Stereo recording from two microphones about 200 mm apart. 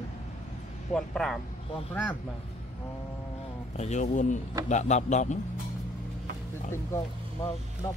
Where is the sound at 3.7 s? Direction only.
35° left (ahead or behind).